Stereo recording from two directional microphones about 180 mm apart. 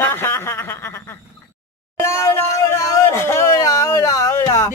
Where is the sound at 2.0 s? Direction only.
15° left (ahead or behind).